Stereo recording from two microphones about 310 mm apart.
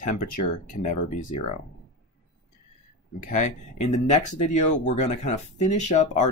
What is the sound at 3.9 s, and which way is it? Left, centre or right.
Speech, left.